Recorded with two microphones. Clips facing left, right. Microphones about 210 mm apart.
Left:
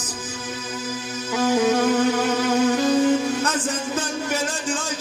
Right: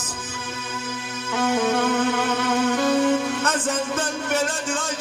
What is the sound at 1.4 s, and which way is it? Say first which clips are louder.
Music: left 3 dB; 35° left (ahead or behind).